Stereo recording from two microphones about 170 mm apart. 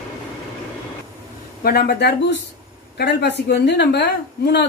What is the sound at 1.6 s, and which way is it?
A woman's voice, 70° left (ahead or behind).